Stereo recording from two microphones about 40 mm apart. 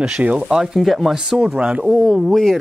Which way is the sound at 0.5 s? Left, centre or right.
Centre.